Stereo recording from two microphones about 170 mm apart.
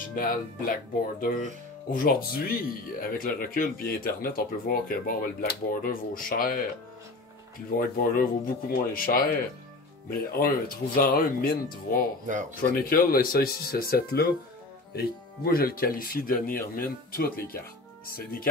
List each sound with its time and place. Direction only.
0.1 s speech: 55° left (ahead or behind)
1.9 s speech: 55° left (ahead or behind)
7.7 s speech: 55° left (ahead or behind)